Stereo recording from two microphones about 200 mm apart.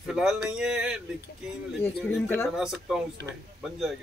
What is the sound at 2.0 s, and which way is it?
Speech, 10° left (ahead or behind).